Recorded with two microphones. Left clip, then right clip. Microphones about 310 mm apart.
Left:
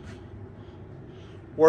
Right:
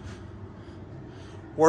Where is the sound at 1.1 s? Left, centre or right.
Centre.